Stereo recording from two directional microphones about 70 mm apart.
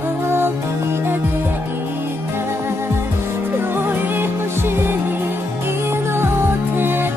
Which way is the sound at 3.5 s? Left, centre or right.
Right.